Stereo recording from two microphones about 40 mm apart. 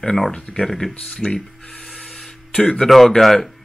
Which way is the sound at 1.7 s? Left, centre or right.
Centre.